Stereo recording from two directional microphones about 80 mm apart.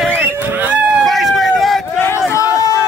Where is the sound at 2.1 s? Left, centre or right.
Left.